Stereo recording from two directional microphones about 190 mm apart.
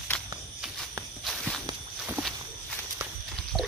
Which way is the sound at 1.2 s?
Centre (ahead or behind).